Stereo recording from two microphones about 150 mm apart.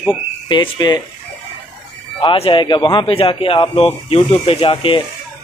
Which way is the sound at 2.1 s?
35° left (ahead or behind).